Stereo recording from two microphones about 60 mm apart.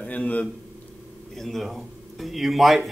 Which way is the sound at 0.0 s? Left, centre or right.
Left.